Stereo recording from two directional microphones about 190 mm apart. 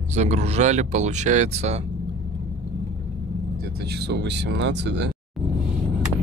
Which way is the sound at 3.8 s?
60° right (ahead or behind).